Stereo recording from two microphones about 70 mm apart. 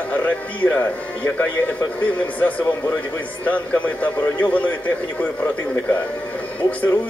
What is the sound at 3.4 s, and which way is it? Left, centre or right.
A man's voice, left.